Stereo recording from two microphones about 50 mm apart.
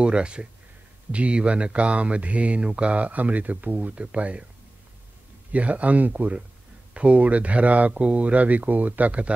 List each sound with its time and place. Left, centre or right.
0.0 s speech: right
5.5 s speech: right